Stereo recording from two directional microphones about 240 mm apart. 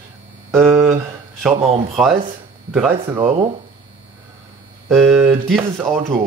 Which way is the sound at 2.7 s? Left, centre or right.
Centre.